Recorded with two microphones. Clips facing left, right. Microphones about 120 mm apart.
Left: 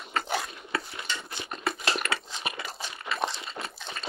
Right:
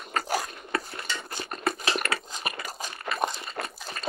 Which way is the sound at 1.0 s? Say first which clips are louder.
Right 1 dB; centre (ahead or behind).